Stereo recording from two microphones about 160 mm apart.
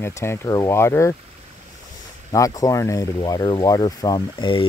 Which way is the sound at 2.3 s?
20° left (ahead or behind).